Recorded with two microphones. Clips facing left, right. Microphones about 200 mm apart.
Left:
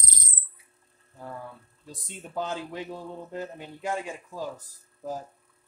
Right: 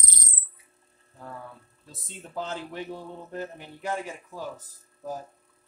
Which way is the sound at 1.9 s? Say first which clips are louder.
Left 2 dB; 15° left (ahead or behind).